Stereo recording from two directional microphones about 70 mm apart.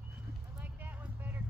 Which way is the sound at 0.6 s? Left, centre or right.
Right.